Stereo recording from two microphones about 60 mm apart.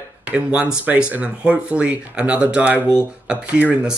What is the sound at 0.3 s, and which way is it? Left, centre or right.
Speech, right.